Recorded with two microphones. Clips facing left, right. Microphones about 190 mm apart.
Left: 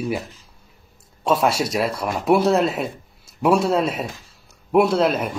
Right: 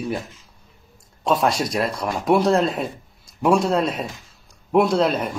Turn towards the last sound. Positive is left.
turn(degrees=5)  # may be behind; listen again after turning